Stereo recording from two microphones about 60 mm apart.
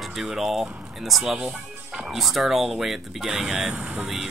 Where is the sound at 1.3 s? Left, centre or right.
Centre.